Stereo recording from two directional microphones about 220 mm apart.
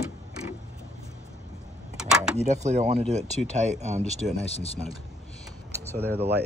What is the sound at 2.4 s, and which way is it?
Speech, 30° right (ahead or behind).